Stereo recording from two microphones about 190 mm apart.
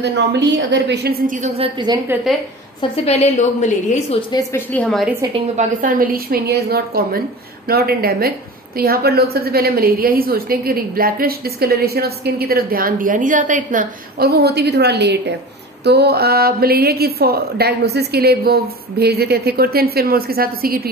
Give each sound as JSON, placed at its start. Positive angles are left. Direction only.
{"t": 0.0, "sound": "a woman's voice", "side_deg": -65}
{"t": 2.3, "sound": "a woman's voice", "side_deg": 0}
{"t": 3.1, "sound": "a woman's voice", "side_deg": 35}
{"t": 4.3, "sound": "a woman's voice", "side_deg": 15}
{"t": 5.6, "sound": "a woman's voice", "side_deg": -45}